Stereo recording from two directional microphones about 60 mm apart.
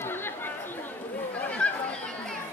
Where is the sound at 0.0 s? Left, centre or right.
Left.